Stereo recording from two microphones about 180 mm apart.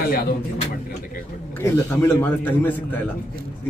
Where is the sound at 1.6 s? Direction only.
15° left (ahead or behind).